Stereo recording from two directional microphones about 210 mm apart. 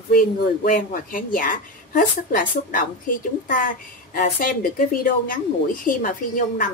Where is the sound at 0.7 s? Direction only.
40° left (ahead or behind).